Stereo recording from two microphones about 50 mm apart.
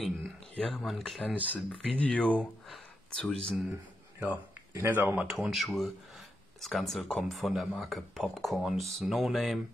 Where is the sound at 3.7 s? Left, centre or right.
Right.